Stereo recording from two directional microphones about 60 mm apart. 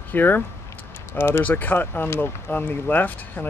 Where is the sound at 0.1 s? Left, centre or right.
Left.